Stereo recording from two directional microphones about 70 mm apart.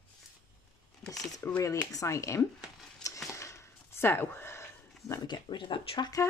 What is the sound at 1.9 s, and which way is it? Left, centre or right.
Speech, left.